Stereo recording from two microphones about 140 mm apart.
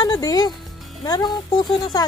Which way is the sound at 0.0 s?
25° left (ahead or behind).